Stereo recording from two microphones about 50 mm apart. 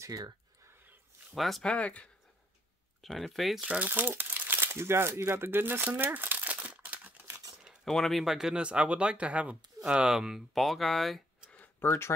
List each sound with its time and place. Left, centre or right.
1.3 s speech: centre
1.6 s speech: left
3.0 s speech: centre
3.9 s speech: right
5.3 s speech: right
6.1 s crumpling: right
7.8 s speech: centre
8.2 s speech: centre; by 9.6 s right
10.0 s speech: centre
10.5 s speech: centre
11.8 s speech: left